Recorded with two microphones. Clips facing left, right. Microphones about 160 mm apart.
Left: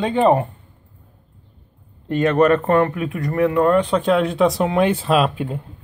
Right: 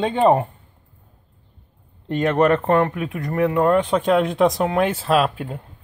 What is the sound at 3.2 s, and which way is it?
Speech, centre (ahead or behind).